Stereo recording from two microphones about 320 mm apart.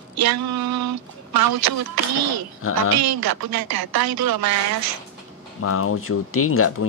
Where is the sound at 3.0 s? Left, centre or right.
Right.